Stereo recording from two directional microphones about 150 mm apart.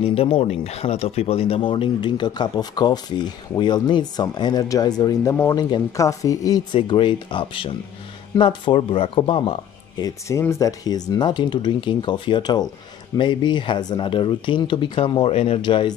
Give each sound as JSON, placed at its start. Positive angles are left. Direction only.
{"t": 0.0, "sound": "speech", "side_deg": 40}
{"t": 10.0, "sound": "speech", "side_deg": 20}